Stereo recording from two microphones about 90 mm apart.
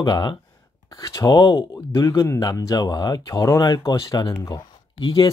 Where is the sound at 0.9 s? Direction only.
40° left (ahead or behind).